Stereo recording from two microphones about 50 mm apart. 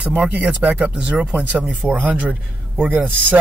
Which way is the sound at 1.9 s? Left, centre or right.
Right.